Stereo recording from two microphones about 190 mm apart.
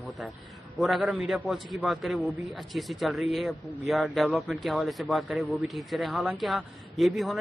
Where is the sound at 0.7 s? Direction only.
Centre (ahead or behind).